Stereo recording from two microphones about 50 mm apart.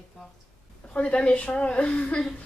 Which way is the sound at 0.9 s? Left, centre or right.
Left.